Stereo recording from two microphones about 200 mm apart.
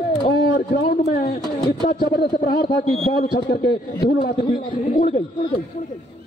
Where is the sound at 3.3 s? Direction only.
55° left (ahead or behind).